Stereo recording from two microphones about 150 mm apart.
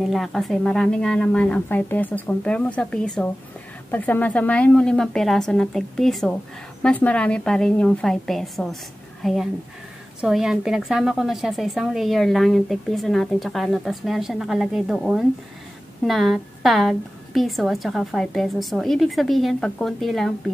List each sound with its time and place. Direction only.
0.0 s a woman's voice: centre (ahead or behind)